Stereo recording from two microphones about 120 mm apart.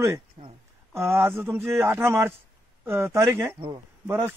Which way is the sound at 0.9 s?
20° right (ahead or behind).